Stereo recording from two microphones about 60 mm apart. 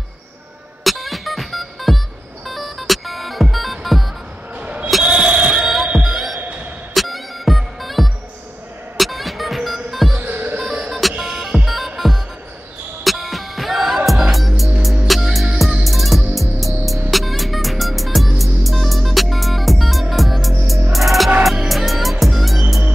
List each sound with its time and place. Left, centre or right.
0.8 s music: centre
4.6 s basketball bounce: right
5.0 s a sound: centre
5.9 s music: centre
6.4 s music: right
6.9 s music: centre
10.2 s music: right
10.6 s music: centre